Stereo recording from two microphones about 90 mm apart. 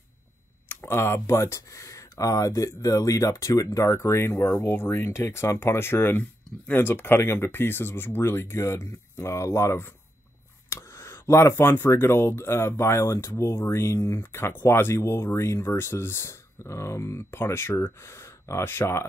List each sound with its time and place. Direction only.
0.7 s speech: 30° left (ahead or behind)